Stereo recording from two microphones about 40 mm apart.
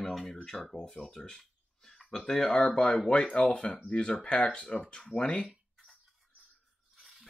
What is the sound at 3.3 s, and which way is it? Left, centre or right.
Speech, left.